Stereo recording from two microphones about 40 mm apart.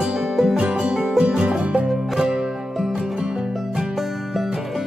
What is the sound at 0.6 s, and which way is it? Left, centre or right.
Music, right.